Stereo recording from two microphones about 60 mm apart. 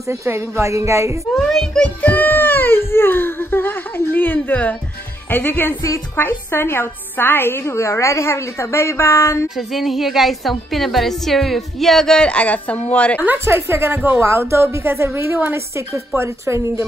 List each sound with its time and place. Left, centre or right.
0.1 s a woman's voice: right
1.3 s a child's voice: centre
2.0 s a woman's voice: left
9.6 s a woman's voice: centre
12.2 s a woman's voice: centre
13.5 s a woman's voice: right
16.2 s a woman's voice: right